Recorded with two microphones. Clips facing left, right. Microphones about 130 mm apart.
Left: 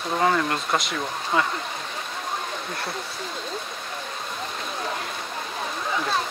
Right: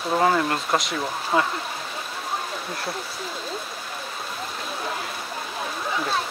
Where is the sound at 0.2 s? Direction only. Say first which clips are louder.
Even; 5° right (ahead or behind).